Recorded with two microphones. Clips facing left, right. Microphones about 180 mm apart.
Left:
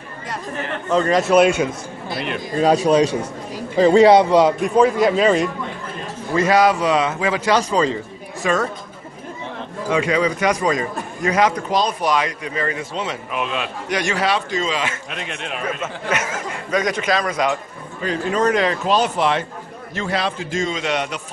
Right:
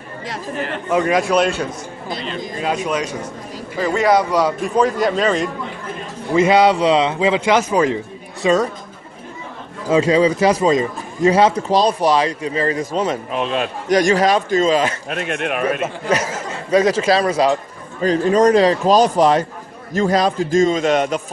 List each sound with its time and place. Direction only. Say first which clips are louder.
0.8 s a man's voice: even; 10° right (ahead or behind)
1.1 s a man's voice: left 6 dB; 5° left (ahead or behind)
2.1 s a sound: left 2 dB; 60° left (ahead or behind)
2.6 s a man's voice: left 7 dB; 35° left (ahead or behind)
4.7 s a man's voice: left 1 dB; 5° left (ahead or behind)
6.3 s a man's voice: right 3 dB; 25° right (ahead or behind)
8.4 s a man's voice: right 5 dB; 25° right (ahead or behind)
9.8 s a man's voice: right 5 dB; 30° right (ahead or behind); by 15.8 s 60° right (ahead or behind)
16.1 s a man's voice: right 3 dB; 35° right (ahead or behind)